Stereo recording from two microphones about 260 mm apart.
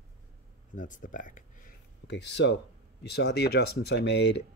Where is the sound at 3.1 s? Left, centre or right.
Left.